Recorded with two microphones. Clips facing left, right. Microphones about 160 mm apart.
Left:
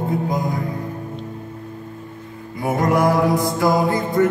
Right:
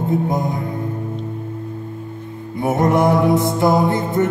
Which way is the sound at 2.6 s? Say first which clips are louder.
Right 2 dB; 25° right (ahead or behind).